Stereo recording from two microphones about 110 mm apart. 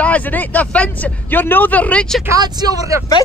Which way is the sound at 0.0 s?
15° left (ahead or behind).